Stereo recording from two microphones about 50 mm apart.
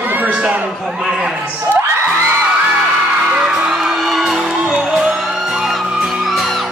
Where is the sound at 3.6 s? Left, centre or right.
Centre.